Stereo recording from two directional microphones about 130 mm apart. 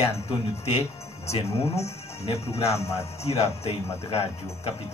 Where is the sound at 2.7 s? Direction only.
20° left (ahead or behind).